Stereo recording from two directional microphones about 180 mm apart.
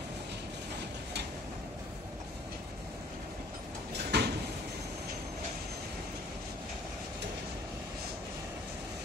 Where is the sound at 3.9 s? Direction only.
65° right (ahead or behind).